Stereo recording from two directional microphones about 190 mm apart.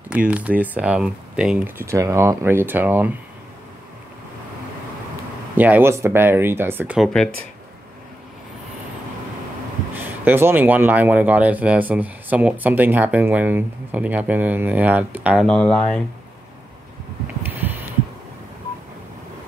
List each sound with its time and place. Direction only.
0.3 s speech: 5° right (ahead or behind)
5.6 s speech: 10° right (ahead or behind)
9.9 s speech: 10° right (ahead or behind)
15.4 s speech: 5° left (ahead or behind)
17.4 s heart sounds: 10° right (ahead or behind)